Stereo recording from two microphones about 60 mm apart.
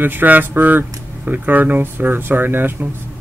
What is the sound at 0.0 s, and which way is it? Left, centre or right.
Speech, right.